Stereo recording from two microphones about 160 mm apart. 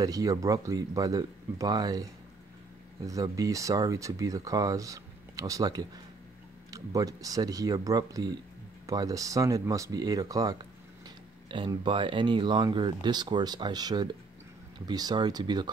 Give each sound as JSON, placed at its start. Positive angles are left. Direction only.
{"t": 0.0, "sound": "speech", "side_deg": -20}
{"t": 3.1, "sound": "speech", "side_deg": -20}